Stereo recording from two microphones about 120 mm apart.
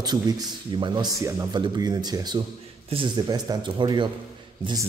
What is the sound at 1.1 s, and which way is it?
Speech, 25° right (ahead or behind).